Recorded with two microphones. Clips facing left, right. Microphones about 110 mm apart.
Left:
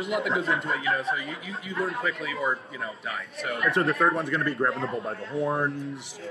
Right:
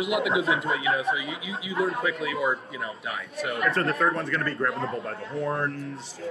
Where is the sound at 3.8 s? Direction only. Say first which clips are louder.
Left 4 dB; 15° left (ahead or behind).